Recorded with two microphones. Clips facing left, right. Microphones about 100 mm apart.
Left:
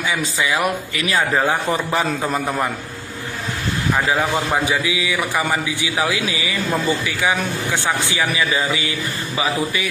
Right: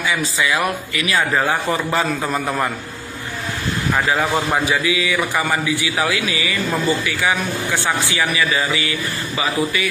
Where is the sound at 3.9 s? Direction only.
15° left (ahead or behind).